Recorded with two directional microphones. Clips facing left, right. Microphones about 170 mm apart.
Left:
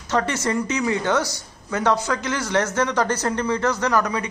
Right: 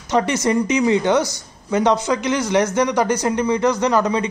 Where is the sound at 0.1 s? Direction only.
15° right (ahead or behind).